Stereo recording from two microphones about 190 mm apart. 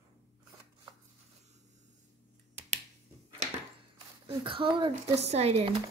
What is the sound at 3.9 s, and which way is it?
Speech, 25° right (ahead or behind).